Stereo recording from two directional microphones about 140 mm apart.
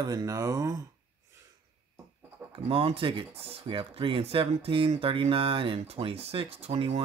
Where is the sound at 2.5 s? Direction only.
40° right (ahead or behind).